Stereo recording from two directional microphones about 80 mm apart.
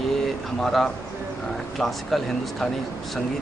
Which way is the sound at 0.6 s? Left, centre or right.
Centre.